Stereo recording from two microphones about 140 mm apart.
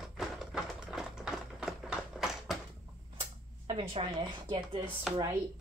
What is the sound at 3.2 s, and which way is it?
Speech, 40° right (ahead or behind).